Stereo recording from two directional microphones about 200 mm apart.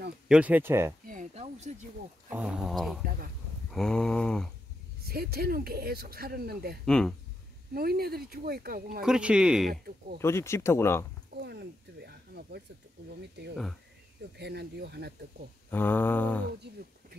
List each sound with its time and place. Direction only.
0.3 s speech: 5° right (ahead or behind)
1.0 s a sound: 40° right (ahead or behind)
2.2 s speech: 5° right (ahead or behind)
5.0 s speech: 50° right (ahead or behind)
6.9 s speech: 5° left (ahead or behind)
7.7 s speech: 50° right (ahead or behind)
9.0 s speech: 5° right (ahead or behind)
9.7 s speech: 50° right (ahead or behind)
10.2 s speech: 15° left (ahead or behind)
11.3 s speech: 55° right (ahead or behind)
14.4 s speech: 55° right (ahead or behind)
15.7 s speech: 10° left (ahead or behind)
16.7 s speech: 55° right (ahead or behind)